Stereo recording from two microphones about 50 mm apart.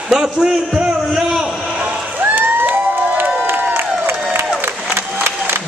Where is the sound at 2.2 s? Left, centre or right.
Right.